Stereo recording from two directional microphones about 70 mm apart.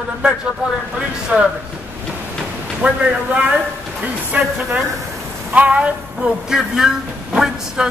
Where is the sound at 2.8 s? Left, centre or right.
Centre.